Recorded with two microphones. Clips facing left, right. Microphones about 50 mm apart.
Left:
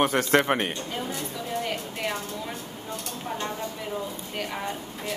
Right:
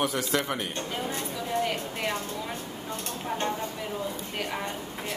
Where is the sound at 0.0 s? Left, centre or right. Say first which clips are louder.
Left 6 dB; left.